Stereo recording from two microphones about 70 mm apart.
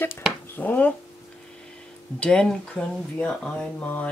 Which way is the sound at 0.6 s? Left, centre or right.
Left.